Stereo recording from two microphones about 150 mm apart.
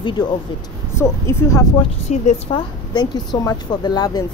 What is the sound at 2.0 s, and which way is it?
Speech, 45° left (ahead or behind).